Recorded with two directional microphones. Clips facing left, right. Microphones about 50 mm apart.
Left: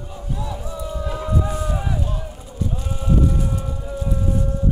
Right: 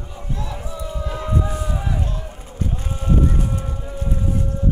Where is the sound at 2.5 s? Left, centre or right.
Right.